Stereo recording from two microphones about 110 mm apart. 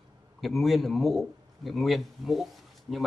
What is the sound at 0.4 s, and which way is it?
A man's voice, centre (ahead or behind).